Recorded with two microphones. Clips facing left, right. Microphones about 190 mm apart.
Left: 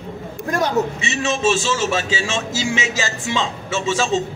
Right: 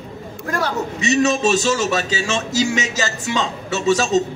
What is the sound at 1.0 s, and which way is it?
A man's voice, 40° right (ahead or behind).